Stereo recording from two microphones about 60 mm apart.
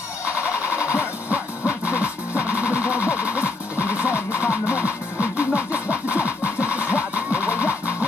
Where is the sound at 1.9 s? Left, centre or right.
Right.